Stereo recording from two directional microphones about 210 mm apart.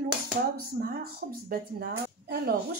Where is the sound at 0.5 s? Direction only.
45° right (ahead or behind).